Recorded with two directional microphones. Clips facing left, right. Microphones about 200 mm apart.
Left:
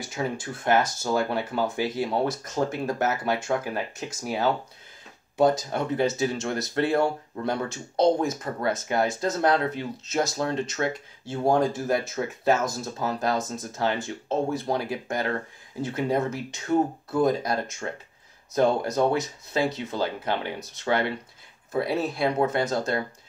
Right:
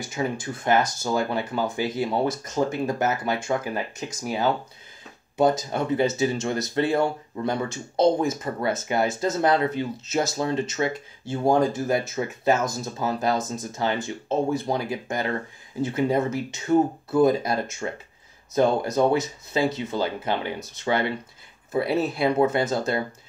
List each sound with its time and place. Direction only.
0.0 s speech: centre (ahead or behind)